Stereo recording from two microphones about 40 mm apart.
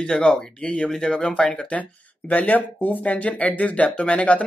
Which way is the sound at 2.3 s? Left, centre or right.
Left.